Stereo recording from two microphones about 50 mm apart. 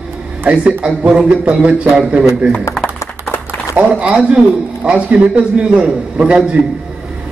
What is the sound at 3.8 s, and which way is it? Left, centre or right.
A man's voice, right.